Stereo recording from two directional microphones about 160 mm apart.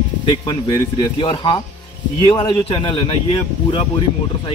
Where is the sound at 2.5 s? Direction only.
30° left (ahead or behind).